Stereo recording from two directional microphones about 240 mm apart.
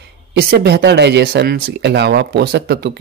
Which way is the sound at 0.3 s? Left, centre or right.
Right.